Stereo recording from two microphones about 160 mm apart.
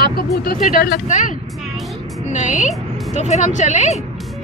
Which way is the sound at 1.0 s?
50° left (ahead or behind).